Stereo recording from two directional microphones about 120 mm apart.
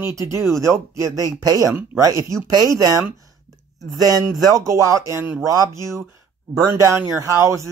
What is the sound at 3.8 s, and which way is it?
Speech, 30° right (ahead or behind).